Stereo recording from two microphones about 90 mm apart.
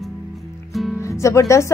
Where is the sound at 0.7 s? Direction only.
Centre (ahead or behind).